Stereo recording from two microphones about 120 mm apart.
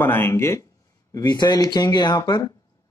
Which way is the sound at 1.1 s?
35° left (ahead or behind).